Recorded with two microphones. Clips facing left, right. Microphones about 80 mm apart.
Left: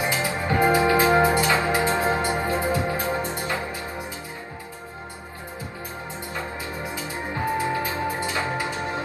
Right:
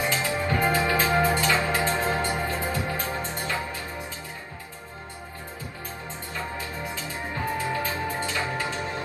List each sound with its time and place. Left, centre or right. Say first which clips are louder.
0.0 s music: left 1 dB; left
7.5 s music: left 2 dB; left